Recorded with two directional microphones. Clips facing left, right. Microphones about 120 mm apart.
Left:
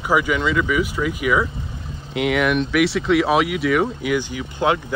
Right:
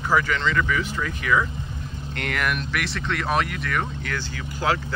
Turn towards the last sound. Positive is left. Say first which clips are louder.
# left 5 dB
turn(degrees=20)  # may be behind; listen again after turning